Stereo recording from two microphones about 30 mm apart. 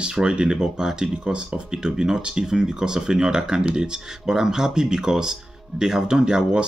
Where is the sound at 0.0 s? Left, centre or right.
Right.